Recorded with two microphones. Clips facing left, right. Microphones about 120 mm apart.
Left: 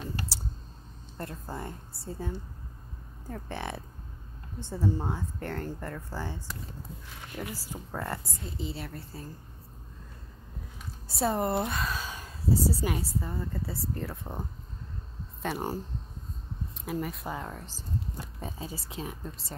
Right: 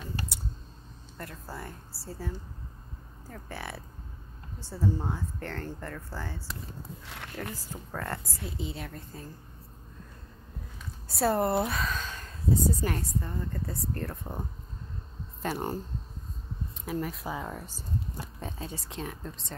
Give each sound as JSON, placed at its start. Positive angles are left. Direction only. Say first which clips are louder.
{"t": 0.3, "sound": "clicking", "louder": "left 1 dB", "side_deg": 30}
{"t": 1.1, "sound": "a woman's voice", "louder": "left 3 dB", "side_deg": 25}
{"t": 7.5, "sound": "speech", "louder": "left 1 dB", "side_deg": 10}
{"t": 8.1, "sound": "speech", "louder": "even", "side_deg": 0}
{"t": 11.1, "sound": "speech", "louder": "right 2 dB", "side_deg": 0}
{"t": 16.8, "sound": "speech", "louder": "even", "side_deg": 0}